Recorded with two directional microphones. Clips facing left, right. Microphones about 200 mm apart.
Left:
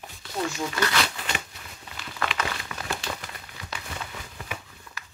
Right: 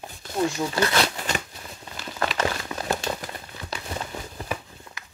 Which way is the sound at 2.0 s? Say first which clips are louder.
Right 3 dB; 40° right (ahead or behind).